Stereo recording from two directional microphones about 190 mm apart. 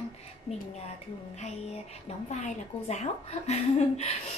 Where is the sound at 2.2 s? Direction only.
40° left (ahead or behind).